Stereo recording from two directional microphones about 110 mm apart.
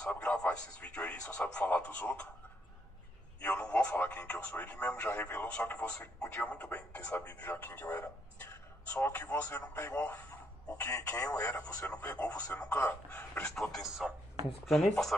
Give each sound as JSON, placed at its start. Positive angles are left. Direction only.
{"t": 0.0, "sound": "speech", "side_deg": 10}
{"t": 3.3, "sound": "a man's voice", "side_deg": 10}
{"t": 13.6, "sound": "speech", "side_deg": 5}